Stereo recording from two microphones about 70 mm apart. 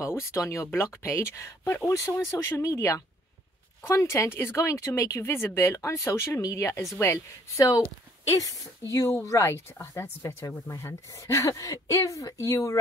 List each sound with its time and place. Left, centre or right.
0.0 s speech: left
8.3 s a woman's voice: left
9.2 s speech: left
10.4 s speech: left
11.5 s speech: left